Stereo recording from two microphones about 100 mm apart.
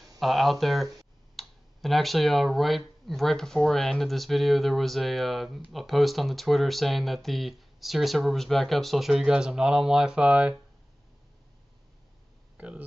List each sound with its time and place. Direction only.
0.2 s speech: centre (ahead or behind)
12.5 s speech: 15° right (ahead or behind)